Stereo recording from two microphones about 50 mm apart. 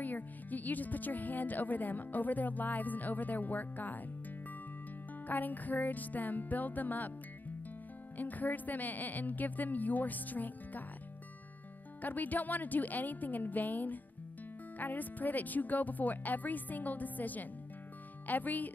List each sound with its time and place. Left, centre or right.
0.0 s speech: left
5.2 s speech: left
8.2 s speech: left
12.0 s speech: left